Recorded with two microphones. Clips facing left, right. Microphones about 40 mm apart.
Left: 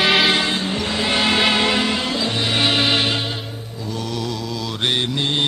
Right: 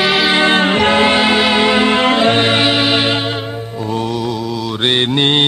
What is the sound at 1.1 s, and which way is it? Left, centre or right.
Music, centre.